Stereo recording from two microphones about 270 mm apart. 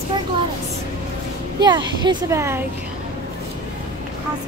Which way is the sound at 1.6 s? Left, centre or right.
Centre.